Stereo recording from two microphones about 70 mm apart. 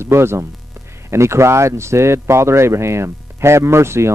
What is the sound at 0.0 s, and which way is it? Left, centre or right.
Speech, right.